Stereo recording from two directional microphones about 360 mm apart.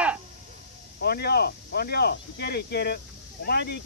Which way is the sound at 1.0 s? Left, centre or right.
Left.